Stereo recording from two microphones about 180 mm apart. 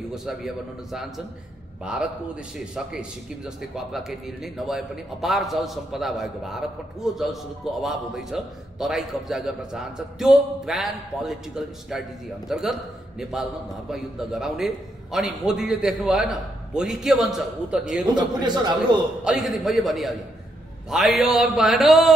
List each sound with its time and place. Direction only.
0.1 s a man's voice: centre (ahead or behind)
2.6 s a man's voice: 5° right (ahead or behind)
18.0 s speech: 25° right (ahead or behind)
19.2 s a man's voice: centre (ahead or behind)